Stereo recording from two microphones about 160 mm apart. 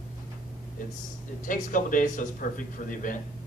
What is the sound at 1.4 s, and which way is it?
Speech, 55° left (ahead or behind).